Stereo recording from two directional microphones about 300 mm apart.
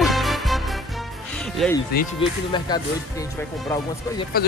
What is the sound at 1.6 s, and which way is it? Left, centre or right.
Speech, centre.